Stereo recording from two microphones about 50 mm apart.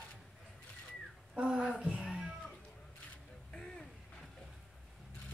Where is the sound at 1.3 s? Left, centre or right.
Centre.